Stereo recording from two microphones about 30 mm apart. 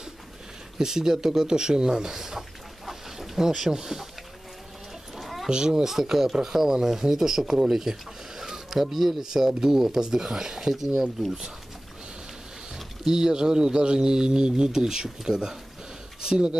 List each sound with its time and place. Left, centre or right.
0.7 s speech: centre
2.1 s speech: centre
2.9 s a sound: centre
3.7 s speech: centre
5.1 s a sound: centre
5.5 s speech: right
5.9 s speech: centre
8.4 s a sound: centre
9.2 s speech: centre
13.0 s speech: right